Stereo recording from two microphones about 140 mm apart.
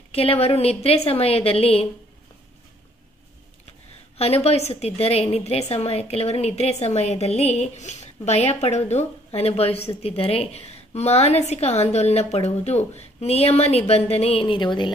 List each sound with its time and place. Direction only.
0.1 s a woman's voice: 45° left (ahead or behind)
4.2 s a woman's voice: 45° left (ahead or behind)